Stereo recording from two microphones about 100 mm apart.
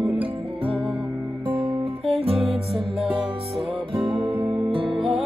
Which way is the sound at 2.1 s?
80° right.